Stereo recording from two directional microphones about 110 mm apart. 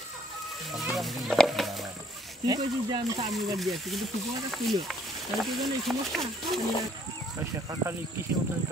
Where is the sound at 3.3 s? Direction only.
Centre (ahead or behind).